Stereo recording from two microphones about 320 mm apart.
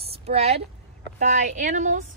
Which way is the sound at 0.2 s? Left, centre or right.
Centre.